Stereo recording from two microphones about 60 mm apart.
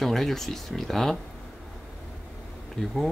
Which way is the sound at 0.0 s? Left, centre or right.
Centre.